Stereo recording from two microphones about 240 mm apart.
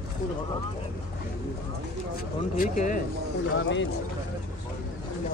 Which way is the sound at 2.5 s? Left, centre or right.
Left.